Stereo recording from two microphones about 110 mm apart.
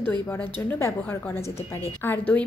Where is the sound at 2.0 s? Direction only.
15° left (ahead or behind).